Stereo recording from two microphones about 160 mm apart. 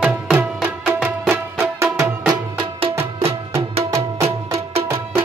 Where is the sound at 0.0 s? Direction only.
10° right (ahead or behind).